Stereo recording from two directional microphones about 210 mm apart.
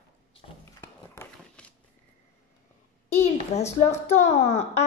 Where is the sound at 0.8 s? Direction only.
10° left (ahead or behind).